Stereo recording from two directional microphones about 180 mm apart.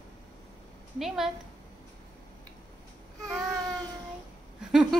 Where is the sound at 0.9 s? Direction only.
Centre (ahead or behind).